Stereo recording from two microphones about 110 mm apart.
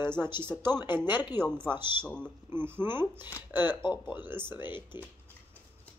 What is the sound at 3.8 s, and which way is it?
Speech, 45° left (ahead or behind).